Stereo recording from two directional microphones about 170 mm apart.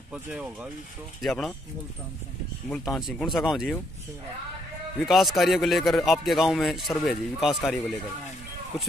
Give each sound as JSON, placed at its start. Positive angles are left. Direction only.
{"t": 0.1, "sound": "a man's voice", "side_deg": -5}
{"t": 2.9, "sound": "a man's voice", "side_deg": 0}
{"t": 5.0, "sound": "a man's voice", "side_deg": 0}